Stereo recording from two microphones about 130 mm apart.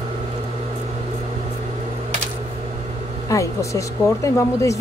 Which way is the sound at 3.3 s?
25° left (ahead or behind).